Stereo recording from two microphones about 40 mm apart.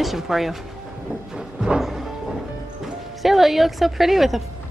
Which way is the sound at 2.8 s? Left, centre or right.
Centre.